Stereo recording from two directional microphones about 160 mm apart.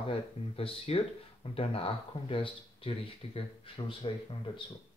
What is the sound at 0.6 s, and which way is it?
Speech, 35° left (ahead or behind).